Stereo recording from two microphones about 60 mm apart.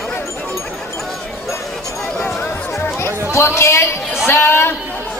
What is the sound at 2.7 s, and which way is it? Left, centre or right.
Chatter, left.